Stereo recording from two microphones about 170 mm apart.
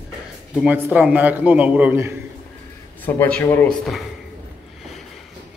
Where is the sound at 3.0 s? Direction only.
10° left (ahead or behind).